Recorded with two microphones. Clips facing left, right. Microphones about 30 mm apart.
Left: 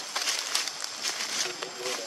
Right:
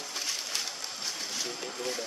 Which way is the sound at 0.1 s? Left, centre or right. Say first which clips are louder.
Left 5 dB; left.